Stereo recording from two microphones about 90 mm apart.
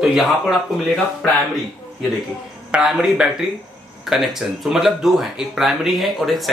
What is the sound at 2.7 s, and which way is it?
A man's voice, 5° right (ahead or behind).